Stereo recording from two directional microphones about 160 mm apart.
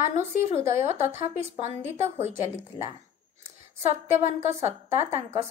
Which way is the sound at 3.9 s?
40° right (ahead or behind).